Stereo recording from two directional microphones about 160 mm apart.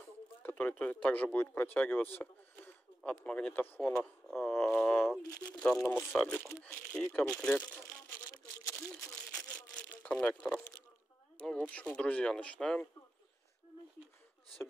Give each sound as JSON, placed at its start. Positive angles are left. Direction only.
{"t": 0.4, "sound": "speech", "side_deg": 10}
{"t": 3.9, "sound": "speech", "side_deg": 0}
{"t": 4.4, "sound": "speech", "side_deg": 15}
{"t": 8.3, "sound": "a sound", "side_deg": 20}
{"t": 9.3, "sound": "crumpling", "side_deg": 5}
{"t": 10.4, "sound": "speech", "side_deg": 10}